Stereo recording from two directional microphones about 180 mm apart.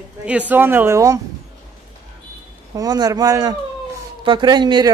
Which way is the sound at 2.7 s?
20° right (ahead or behind).